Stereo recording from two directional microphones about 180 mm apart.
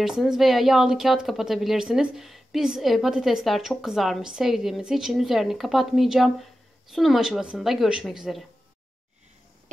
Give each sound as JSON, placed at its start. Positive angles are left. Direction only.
{"t": 0.0, "sound": "a woman's voice", "side_deg": 0}